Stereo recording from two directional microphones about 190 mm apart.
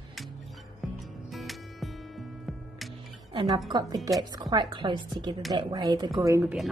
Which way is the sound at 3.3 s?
25° right (ahead or behind).